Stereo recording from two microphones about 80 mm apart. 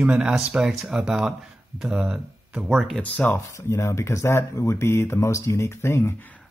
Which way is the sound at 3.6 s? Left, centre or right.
Left.